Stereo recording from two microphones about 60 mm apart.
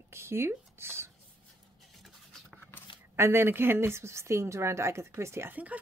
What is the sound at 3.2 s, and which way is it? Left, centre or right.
Speech, right.